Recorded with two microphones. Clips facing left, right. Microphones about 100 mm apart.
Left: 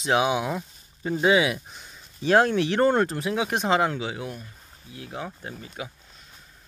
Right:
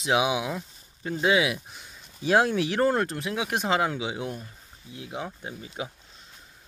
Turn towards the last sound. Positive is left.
turn(degrees=-20)  # may be behind; listen again after turning